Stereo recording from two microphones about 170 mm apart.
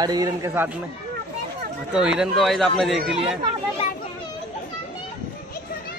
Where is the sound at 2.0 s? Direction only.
5° right (ahead or behind).